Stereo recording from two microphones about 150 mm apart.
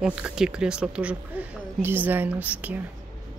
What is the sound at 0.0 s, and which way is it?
Speech, 5° right (ahead or behind).